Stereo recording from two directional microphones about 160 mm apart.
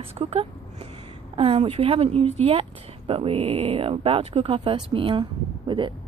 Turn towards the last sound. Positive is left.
turn(degrees=-30)  # may be behind; listen again after turning